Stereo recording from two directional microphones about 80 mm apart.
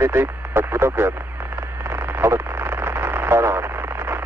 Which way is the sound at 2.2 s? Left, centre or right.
Right.